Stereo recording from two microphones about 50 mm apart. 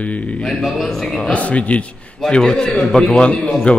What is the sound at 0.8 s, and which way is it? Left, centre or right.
Speech, centre.